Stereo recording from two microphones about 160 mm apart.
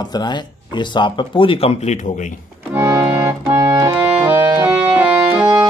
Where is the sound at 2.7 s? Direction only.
20° right (ahead or behind).